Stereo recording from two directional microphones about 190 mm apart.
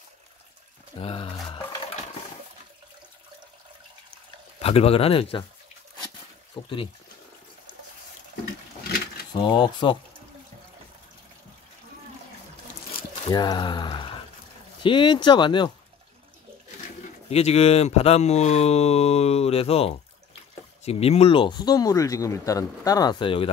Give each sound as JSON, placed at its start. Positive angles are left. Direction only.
{"t": 0.9, "sound": "speech", "side_deg": 30}
{"t": 4.6, "sound": "speech", "side_deg": 30}
{"t": 6.6, "sound": "speech", "side_deg": 25}
{"t": 9.4, "sound": "speech", "side_deg": 25}
{"t": 12.9, "sound": "squish", "side_deg": 20}
{"t": 14.8, "sound": "speech", "side_deg": 25}
{"t": 17.3, "sound": "speech", "side_deg": 35}